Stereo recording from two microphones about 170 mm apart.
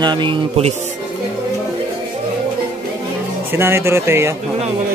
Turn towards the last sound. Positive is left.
turn(degrees=-15)  # may be behind; listen again after turning